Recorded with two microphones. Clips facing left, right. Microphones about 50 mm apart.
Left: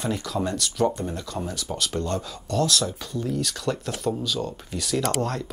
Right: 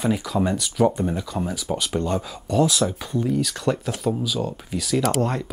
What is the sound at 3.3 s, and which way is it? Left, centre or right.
Speech, centre.